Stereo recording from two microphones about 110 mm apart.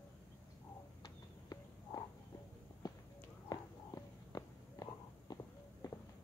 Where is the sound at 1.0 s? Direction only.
35° left (ahead or behind).